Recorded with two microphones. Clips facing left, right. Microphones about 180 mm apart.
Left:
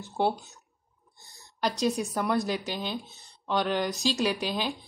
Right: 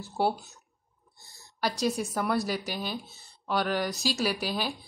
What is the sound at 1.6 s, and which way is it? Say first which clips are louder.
Speech: left 1 dB; 5° right (ahead or behind).